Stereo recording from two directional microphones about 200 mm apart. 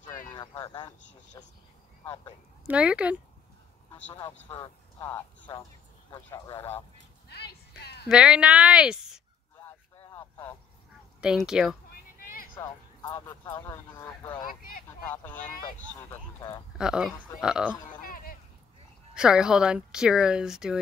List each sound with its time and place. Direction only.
0.2 s speech: 20° left (ahead or behind)
2.6 s speech: 5° right (ahead or behind)
4.2 s speech: 20° left (ahead or behind)
7.2 s a sound: 55° left (ahead or behind)
8.1 s speech: 5° right (ahead or behind)
10.0 s a sound: 10° left (ahead or behind)
11.1 s speech: 5° right (ahead or behind)
12.2 s a sound: 45° left (ahead or behind)
12.5 s speech: 20° left (ahead or behind)
14.4 s speech: 45° left (ahead or behind)
14.9 s speech: 10° left (ahead or behind)
16.7 s speech: 5° right (ahead or behind)
18.0 s a sound: 45° left (ahead or behind)
19.1 s speech: 5° right (ahead or behind)